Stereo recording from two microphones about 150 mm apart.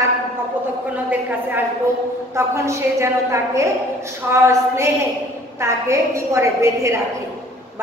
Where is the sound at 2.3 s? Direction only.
20° right (ahead or behind).